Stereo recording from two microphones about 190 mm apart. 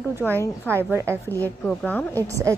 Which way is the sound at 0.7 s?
10° right (ahead or behind).